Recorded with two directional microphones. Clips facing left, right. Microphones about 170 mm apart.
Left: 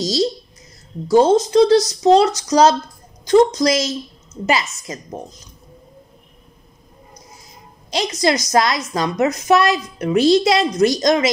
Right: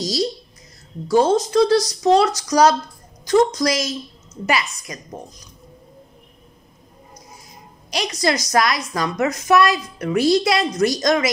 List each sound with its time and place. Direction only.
0.0 s a sound: 25° left (ahead or behind)
1.0 s a woman's voice: 20° left (ahead or behind)
7.9 s a woman's voice: 20° left (ahead or behind)